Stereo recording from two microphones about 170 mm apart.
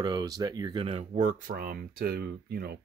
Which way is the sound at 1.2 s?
55° right (ahead or behind).